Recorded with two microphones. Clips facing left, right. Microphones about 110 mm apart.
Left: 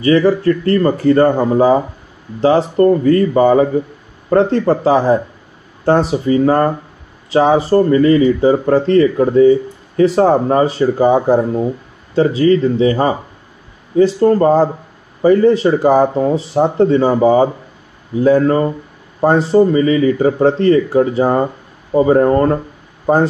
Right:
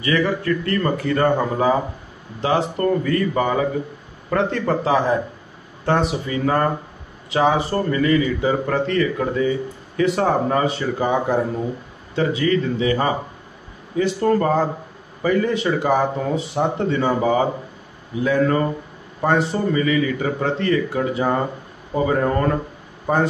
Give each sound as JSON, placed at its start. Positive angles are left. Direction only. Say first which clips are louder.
{"t": 0.0, "sound": "speech", "louder": "left 9 dB", "side_deg": 35}